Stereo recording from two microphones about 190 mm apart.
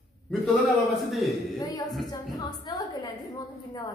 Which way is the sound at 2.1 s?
20° left (ahead or behind).